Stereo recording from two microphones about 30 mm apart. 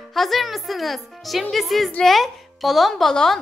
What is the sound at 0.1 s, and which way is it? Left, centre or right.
A woman's voice, centre.